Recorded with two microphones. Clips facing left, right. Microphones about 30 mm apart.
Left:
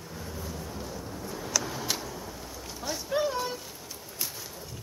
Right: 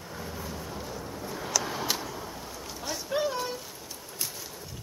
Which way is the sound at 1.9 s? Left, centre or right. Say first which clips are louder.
Right 1 dB; centre.